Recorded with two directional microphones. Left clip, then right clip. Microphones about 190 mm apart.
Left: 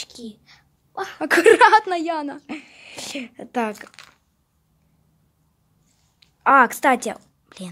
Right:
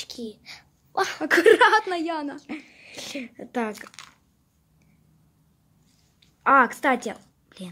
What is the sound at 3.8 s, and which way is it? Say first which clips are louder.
Speech: even; centre (ahead or behind).